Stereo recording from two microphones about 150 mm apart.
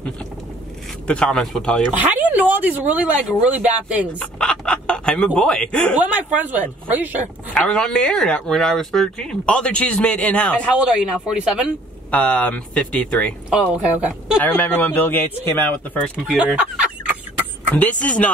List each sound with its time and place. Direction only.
1.0 s speech: 5° left (ahead or behind)
1.9 s speech: 10° right (ahead or behind)
4.2 s speech: 5° left (ahead or behind)
5.9 s speech: 10° right (ahead or behind)
7.5 s speech: 5° left (ahead or behind)
10.8 s speech: 5° right (ahead or behind)
12.1 s speech: 10° left (ahead or behind)
13.9 s speech: 10° right (ahead or behind)
14.4 s speech: 10° left (ahead or behind)
16.3 s speech: 10° right (ahead or behind)
17.6 s speech: 10° left (ahead or behind)